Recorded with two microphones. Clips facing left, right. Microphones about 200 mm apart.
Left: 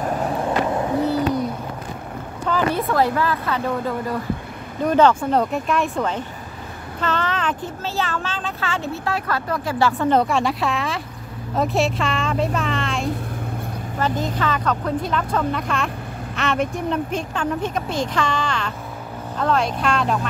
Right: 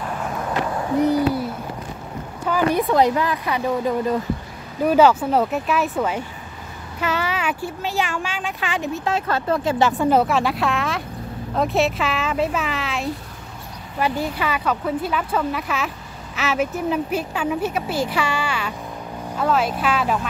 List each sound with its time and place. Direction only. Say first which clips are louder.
0.0 s skateboard: left 5 dB; 40° left (ahead or behind)
1.0 s hoot: right 1 dB; 10° right (ahead or behind)
2.4 s speech: right 2 dB; 10° right (ahead or behind)
10.0 s speech: even; 5° right (ahead or behind)